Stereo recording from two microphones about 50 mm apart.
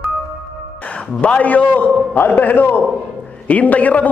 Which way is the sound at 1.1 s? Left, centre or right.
Left.